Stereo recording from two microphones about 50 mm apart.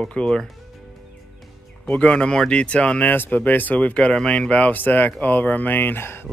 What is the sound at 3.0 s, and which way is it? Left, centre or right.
Speech, left.